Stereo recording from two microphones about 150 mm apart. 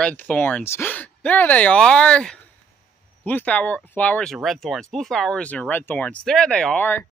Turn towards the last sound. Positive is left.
turn(degrees=10)  # may be behind; listen again after turning